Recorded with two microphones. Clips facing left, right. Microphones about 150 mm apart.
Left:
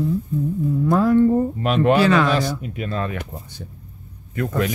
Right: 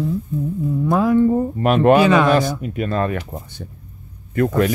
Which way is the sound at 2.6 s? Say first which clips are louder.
Right 5 dB; 50° right (ahead or behind).